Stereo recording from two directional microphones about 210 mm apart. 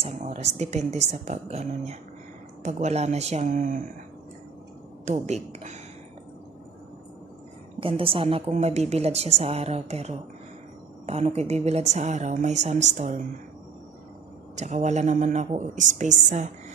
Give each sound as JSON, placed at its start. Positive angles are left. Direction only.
{"t": 0.0, "sound": "a woman's voice", "side_deg": -30}
{"t": 5.0, "sound": "a woman's voice", "side_deg": -35}
{"t": 7.8, "sound": "a woman's voice", "side_deg": -25}
{"t": 14.5, "sound": "a woman's voice", "side_deg": -35}